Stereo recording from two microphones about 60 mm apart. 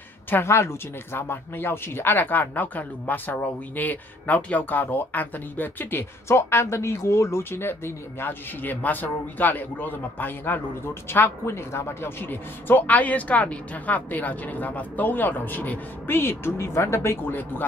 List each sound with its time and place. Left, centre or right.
0.5 s speech: left